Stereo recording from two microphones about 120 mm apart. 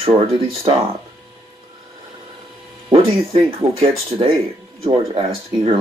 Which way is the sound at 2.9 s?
50° right (ahead or behind).